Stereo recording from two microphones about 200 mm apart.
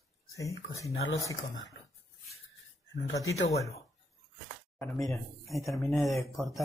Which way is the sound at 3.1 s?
15° left (ahead or behind).